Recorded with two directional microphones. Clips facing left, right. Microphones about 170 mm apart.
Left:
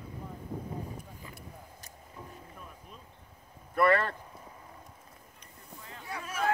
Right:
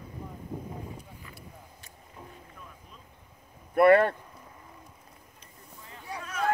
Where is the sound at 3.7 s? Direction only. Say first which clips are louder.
Right 7 dB; 55° right (ahead or behind).